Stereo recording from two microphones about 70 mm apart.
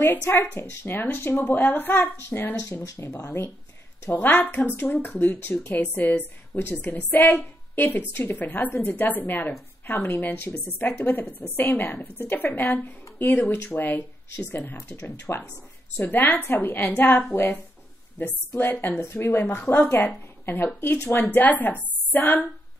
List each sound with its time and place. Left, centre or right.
0.4 s a woman's voice: left